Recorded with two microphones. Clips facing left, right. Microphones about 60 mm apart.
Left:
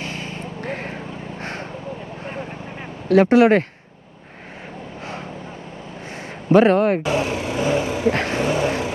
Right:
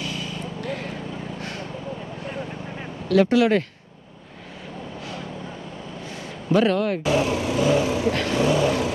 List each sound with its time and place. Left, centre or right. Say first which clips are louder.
0.0 s vehicle: left 1 dB; left
3.1 s speech: left 5 dB; left
6.5 s speech: left 6 dB; left